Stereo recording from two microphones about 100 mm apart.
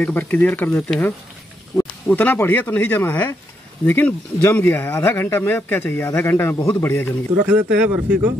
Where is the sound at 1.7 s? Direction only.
15° left (ahead or behind).